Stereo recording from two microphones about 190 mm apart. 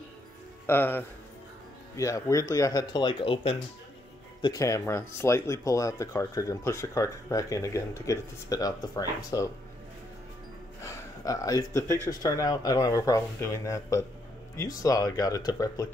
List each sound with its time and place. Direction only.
0.7 s speech: 10° left (ahead or behind)
10.8 s speech: 15° left (ahead or behind)